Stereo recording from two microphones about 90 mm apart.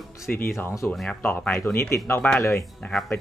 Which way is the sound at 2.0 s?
20° left (ahead or behind).